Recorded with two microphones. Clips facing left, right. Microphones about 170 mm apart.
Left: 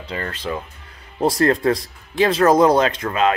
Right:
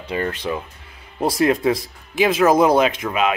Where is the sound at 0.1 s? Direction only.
15° right (ahead or behind).